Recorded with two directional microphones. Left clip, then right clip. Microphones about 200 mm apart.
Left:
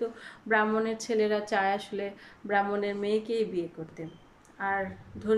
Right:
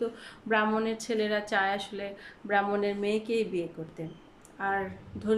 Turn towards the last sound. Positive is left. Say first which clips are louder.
# left 1 dB
turn(degrees=-5)  # may be behind; listen again after turning